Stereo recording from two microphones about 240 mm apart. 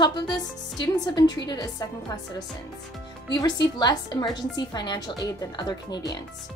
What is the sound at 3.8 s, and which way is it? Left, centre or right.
A woman's voice, centre.